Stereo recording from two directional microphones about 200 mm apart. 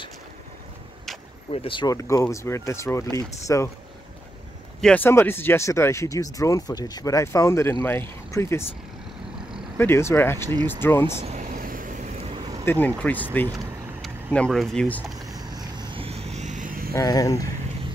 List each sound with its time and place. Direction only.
1.5 s speech: 25° left (ahead or behind)
4.8 s speech: 10° left (ahead or behind)
9.8 s speech: 10° left (ahead or behind)
11.2 s vehicle: 40° right (ahead or behind)
12.6 s speech: 10° left (ahead or behind)
15.3 s vehicle: 20° right (ahead or behind); by 16.9 s 45° right (ahead or behind)
16.9 s speech: 20° left (ahead or behind)